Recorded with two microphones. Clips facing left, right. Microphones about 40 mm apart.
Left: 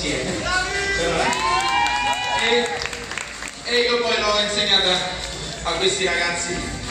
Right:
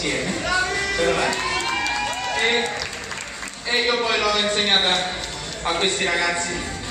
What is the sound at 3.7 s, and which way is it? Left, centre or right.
A man's voice, centre.